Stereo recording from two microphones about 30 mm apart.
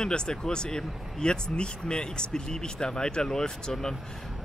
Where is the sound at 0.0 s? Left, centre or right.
Left.